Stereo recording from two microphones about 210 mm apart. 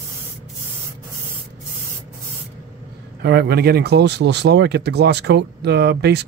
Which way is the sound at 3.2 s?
50° right (ahead or behind).